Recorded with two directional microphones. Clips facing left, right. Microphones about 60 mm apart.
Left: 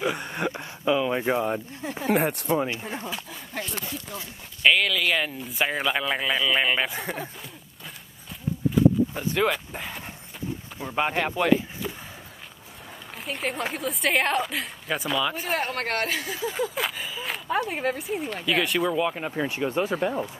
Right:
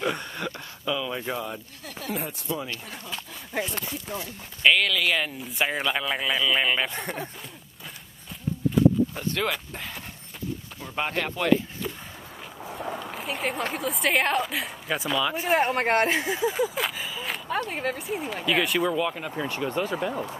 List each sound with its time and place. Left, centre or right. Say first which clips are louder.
0.2 s speech: left 4 dB; left
2.0 s speech: left 8 dB; left
2.7 s speech: left 5 dB; left
3.5 s speech: right 4 dB; centre
4.6 s speech: even; centre
8.7 s a sound: even; centre
11.0 s speech: left 3 dB; centre
12.6 s a sound: right 14 dB; right
13.0 s speech: left 3 dB; centre
15.4 s speech: right 5 dB; centre
16.4 s speech: left 2 dB; centre
18.9 s speech: left 2 dB; centre